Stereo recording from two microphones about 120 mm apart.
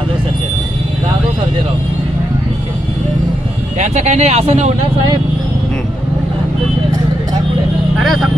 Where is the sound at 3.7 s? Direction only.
75° right (ahead or behind).